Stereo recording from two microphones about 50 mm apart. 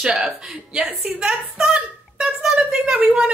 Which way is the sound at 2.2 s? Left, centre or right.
Centre.